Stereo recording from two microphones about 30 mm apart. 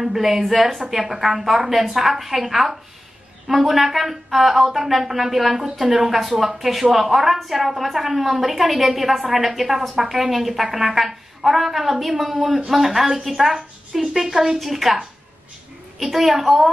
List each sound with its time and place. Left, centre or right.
0.0 s a woman's voice: centre
16.0 s speech: centre